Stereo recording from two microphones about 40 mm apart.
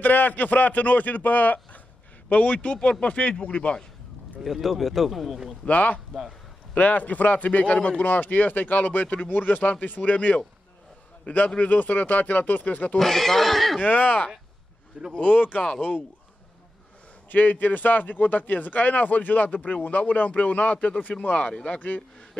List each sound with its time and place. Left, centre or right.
0.0 s speech: left
2.2 s speech: left
4.4 s speech: centre
5.7 s speech: left
11.5 s speech: left
13.0 s speech: centre
13.8 s speech: left
15.2 s speech: left
17.3 s speech: left
21.7 s speech: left